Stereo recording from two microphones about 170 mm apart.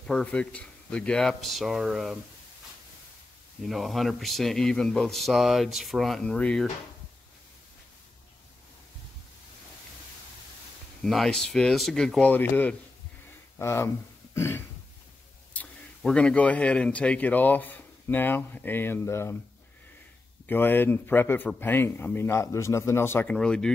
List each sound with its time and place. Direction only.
0.0 s speech: 5° left (ahead or behind)
3.6 s speech: centre (ahead or behind)
11.0 s speech: centre (ahead or behind)
20.4 s speech: 10° left (ahead or behind)